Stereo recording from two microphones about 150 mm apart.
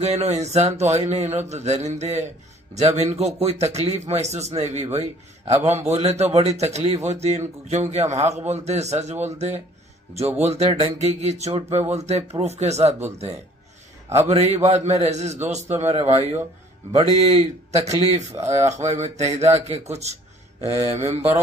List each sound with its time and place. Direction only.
0.0 s a man's voice: 45° right (ahead or behind)